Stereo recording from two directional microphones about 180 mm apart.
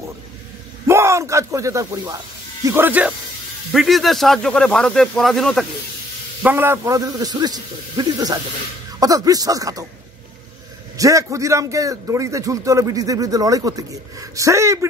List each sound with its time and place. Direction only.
0.8 s speech: 15° right (ahead or behind); by 5.7 s centre (ahead or behind)
6.4 s a man's voice: 10° right (ahead or behind)
11.0 s a man's voice: 15° right (ahead or behind)